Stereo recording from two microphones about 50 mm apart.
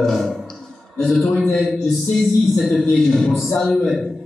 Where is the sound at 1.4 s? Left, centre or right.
Centre.